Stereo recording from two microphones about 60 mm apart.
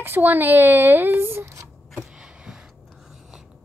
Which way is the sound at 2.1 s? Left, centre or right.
Centre.